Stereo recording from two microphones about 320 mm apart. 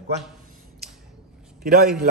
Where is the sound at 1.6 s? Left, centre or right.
Right.